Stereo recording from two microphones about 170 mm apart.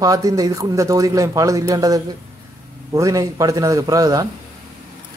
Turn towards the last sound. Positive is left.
turn(degrees=-20)  # may be behind; listen again after turning